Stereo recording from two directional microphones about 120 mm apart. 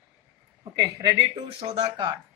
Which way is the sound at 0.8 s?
30° right (ahead or behind).